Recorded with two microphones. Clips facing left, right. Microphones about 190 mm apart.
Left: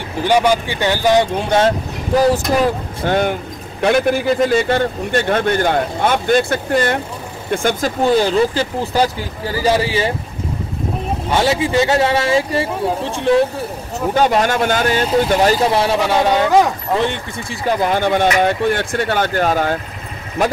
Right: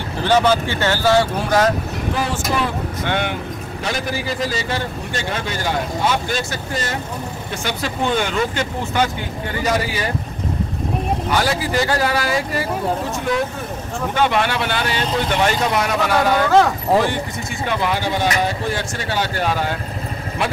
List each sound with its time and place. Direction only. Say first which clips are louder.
0.2 s speech: left 2 dB; 15° left (ahead or behind)
2.1 s speech: left 10 dB; 40° left (ahead or behind)
3.8 s a man's voice: left 10 dB; 55° left (ahead or behind)
7.5 s speech: left 8 dB; 45° left (ahead or behind); by 10.1 s 30° left (ahead or behind)
11.2 s speech: left 7 dB; 25° left (ahead or behind)
17.6 s speech: left 6 dB; 45° left (ahead or behind)